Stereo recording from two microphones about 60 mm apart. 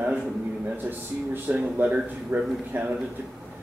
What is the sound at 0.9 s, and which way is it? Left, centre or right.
A man's voice, right.